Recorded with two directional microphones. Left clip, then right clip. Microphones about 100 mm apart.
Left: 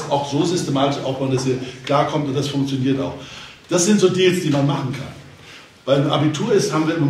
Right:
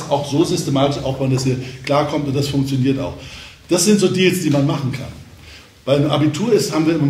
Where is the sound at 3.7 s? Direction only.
25° right (ahead or behind).